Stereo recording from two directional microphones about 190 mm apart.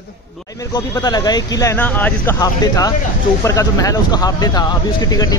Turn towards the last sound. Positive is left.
turn(degrees=20)  # may be behind; listen again after turning